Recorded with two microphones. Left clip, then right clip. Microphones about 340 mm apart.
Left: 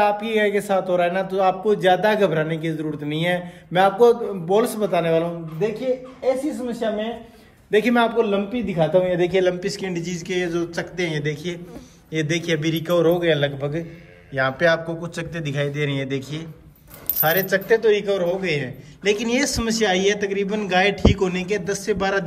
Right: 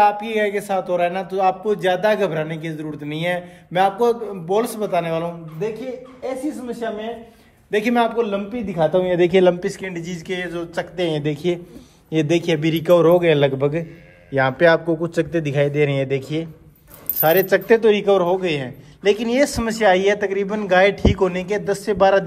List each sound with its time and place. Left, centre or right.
0.0 s a man's voice: centre
8.9 s a man's voice: centre
9.5 s a man's voice: centre